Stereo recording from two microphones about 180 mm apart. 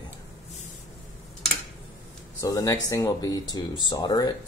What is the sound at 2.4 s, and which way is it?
Speech, 20° left (ahead or behind).